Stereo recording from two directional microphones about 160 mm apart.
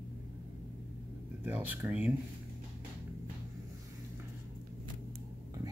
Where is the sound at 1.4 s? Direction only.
10° right (ahead or behind).